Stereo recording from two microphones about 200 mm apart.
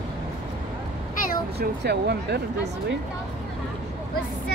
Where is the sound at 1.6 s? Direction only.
55° right (ahead or behind).